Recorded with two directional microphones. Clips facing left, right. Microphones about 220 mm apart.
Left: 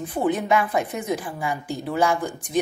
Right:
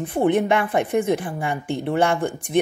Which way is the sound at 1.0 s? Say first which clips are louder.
Right 5 dB; 25° right (ahead or behind).